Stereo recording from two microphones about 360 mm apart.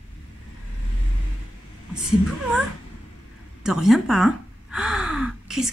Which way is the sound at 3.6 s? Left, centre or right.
Centre.